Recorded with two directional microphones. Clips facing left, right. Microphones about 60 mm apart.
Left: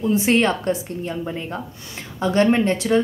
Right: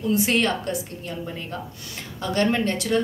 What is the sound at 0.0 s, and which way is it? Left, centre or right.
Speech, left.